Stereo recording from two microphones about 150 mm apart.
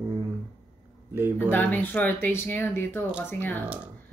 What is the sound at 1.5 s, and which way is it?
Speech, 10° left (ahead or behind).